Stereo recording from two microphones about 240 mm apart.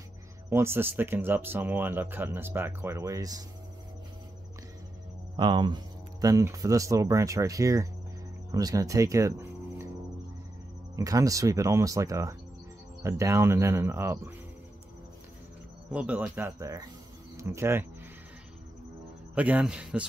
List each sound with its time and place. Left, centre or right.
0.5 s speech: centre
5.3 s speech: centre
11.0 s speech: centre
15.9 s speech: centre
19.3 s speech: centre